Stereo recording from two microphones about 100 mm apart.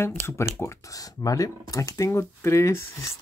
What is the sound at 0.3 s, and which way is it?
Speech, 30° left (ahead or behind).